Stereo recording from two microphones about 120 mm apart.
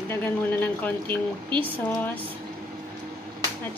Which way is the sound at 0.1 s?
15° left (ahead or behind).